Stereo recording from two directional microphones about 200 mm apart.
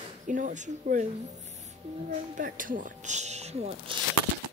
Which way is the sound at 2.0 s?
40° right (ahead or behind).